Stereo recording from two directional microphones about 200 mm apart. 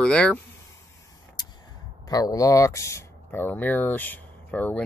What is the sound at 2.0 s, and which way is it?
Speech, 20° left (ahead or behind).